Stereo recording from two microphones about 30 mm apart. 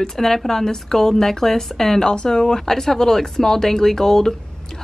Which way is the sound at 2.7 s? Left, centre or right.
Centre.